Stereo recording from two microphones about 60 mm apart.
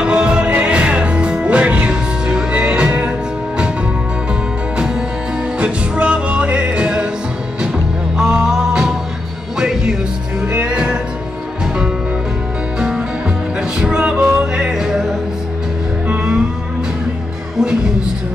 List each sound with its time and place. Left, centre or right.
0.0 s music: centre
5.6 s music: centre
12.7 s music: centre